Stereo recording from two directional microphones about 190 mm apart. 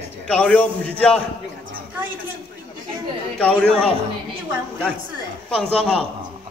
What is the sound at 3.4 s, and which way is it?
Speech, 5° left (ahead or behind).